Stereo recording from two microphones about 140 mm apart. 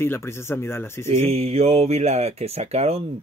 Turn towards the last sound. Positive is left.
turn(degrees=-45)  # may be behind; listen again after turning